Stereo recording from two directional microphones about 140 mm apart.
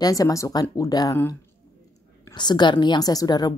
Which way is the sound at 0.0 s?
25° left (ahead or behind).